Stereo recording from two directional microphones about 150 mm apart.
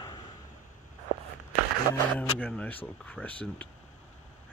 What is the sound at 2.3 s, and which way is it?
Speech, 10° left (ahead or behind).